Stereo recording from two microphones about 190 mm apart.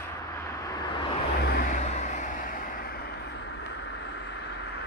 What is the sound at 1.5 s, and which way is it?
Vehicle, 45° left (ahead or behind).